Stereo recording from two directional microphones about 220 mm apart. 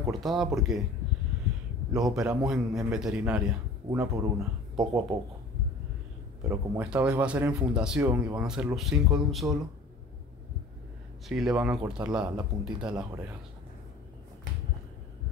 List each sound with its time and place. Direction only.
0.1 s speech: centre (ahead or behind)
2.0 s speech: centre (ahead or behind)
6.5 s speech: 10° right (ahead or behind)
11.2 s speech: centre (ahead or behind)